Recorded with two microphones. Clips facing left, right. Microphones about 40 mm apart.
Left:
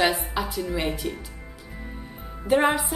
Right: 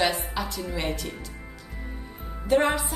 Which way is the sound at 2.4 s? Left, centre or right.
Centre.